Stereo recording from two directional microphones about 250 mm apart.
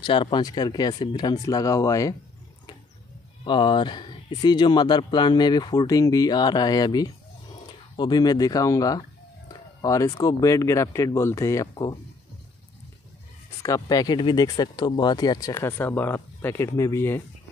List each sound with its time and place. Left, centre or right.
0.0 s speech: centre
3.4 s speech: centre
13.6 s speech: centre